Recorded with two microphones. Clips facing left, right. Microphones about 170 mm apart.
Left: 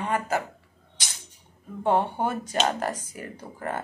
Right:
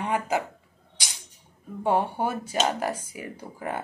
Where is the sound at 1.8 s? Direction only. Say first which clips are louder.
Left 1 dB; 10° right (ahead or behind).